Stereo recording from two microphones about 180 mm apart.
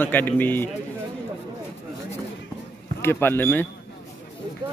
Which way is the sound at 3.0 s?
10° left (ahead or behind).